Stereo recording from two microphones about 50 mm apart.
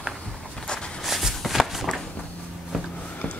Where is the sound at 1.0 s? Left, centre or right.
Centre.